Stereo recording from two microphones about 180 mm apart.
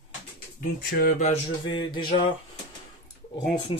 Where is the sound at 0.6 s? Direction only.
50° left (ahead or behind).